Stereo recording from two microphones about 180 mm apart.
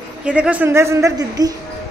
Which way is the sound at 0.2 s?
5° right (ahead or behind).